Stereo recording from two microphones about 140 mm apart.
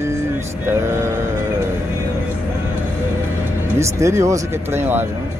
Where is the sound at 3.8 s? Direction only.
20° right (ahead or behind).